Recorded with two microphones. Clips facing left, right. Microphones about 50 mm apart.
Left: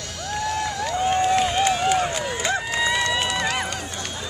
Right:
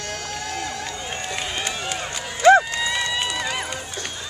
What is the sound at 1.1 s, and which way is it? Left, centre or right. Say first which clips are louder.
Run: left 10 dB; centre.